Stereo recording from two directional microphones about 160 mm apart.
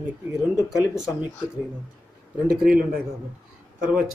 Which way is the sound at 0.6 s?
5° right (ahead or behind).